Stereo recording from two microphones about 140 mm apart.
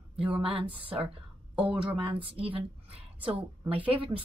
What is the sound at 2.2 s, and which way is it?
Speech, 40° right (ahead or behind).